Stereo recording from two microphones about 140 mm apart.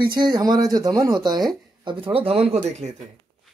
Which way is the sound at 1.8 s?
40° right (ahead or behind).